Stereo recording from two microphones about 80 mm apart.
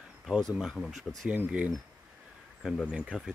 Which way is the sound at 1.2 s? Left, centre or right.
Centre.